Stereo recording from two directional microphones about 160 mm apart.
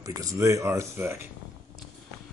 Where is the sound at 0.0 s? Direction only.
20° right (ahead or behind).